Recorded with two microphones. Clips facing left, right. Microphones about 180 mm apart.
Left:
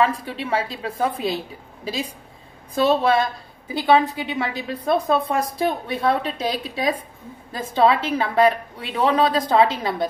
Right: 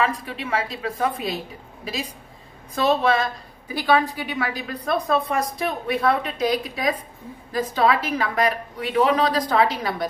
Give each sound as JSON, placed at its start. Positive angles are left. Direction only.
{"t": 0.0, "sound": "a woman's voice", "side_deg": 30}